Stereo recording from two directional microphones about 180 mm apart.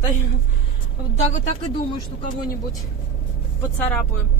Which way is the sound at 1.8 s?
25° left (ahead or behind).